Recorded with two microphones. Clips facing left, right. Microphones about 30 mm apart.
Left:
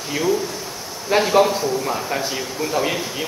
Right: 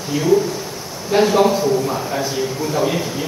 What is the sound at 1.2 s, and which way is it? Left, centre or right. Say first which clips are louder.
A man's voice: right 3 dB; centre.